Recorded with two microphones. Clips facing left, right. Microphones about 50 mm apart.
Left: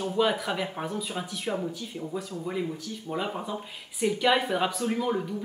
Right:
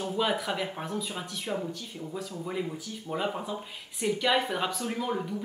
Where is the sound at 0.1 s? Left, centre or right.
Centre.